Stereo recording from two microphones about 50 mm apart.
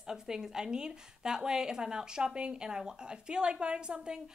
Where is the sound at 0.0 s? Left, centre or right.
Centre.